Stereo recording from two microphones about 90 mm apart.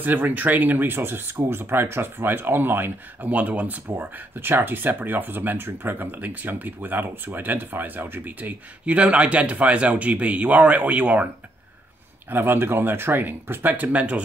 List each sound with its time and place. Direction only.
0.0 s speech: 20° right (ahead or behind)
12.3 s speech: 25° right (ahead or behind)